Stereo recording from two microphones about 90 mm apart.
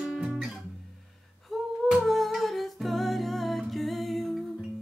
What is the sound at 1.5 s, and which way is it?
Humming, centre (ahead or behind).